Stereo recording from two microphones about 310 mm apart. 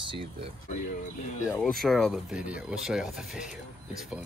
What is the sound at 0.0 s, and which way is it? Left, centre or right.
Speech, centre.